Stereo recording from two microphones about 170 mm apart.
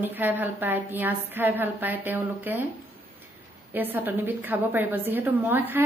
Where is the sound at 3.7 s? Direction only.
10° right (ahead or behind).